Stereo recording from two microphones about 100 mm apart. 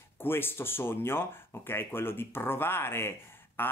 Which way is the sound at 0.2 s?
20° left (ahead or behind).